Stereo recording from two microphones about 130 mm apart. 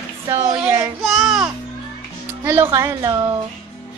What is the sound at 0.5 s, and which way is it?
Child singing, 20° right (ahead or behind).